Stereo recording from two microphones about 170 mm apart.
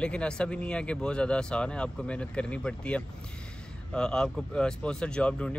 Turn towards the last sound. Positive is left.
turn(degrees=5)  # may be behind; listen again after turning